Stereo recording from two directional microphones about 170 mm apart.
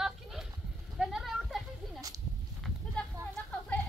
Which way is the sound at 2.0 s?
20° right (ahead or behind).